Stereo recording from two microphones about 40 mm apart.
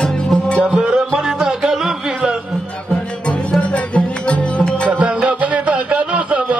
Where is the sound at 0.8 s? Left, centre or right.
Right.